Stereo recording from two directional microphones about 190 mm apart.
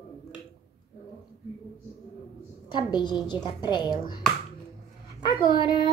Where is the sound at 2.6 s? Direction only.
25° left (ahead or behind).